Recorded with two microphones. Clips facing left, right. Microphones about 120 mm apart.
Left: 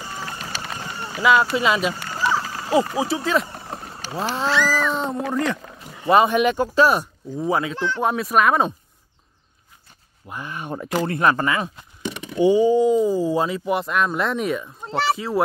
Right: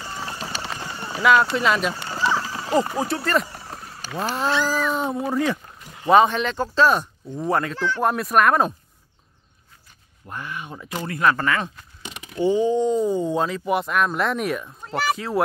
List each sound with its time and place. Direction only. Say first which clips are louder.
1.2 s speech: even; centre (ahead or behind)
2.1 s a sound: even; 5° left (ahead or behind)
2.9 s speech: left 1 dB; centre (ahead or behind)
7.7 s speech: even; 15° left (ahead or behind)
8.0 s speech: even; centre (ahead or behind)
10.5 s speech: left 4 dB; 45° left (ahead or behind)
11.1 s speech: right 1 dB; 25° left (ahead or behind); by 15.4 s centre (ahead or behind)